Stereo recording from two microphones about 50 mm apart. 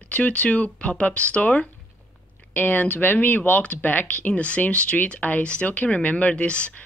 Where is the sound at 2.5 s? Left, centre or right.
Left.